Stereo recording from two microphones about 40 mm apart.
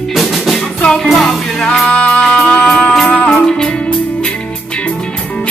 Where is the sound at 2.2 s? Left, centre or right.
Centre.